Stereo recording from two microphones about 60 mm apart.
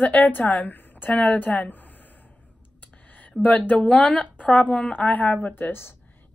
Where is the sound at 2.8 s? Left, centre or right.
Left.